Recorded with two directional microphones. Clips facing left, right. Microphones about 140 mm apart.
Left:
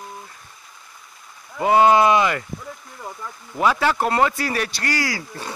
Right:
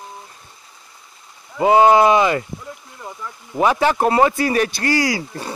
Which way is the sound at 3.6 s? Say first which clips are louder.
Right 3 dB; 20° right (ahead or behind).